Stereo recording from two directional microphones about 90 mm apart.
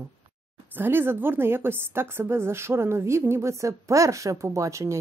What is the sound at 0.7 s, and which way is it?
A woman's voice, 25° right (ahead or behind).